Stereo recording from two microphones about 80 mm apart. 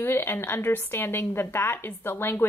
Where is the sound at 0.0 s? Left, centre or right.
Left.